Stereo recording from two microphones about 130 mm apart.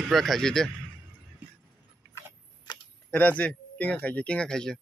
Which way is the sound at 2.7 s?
35° left (ahead or behind).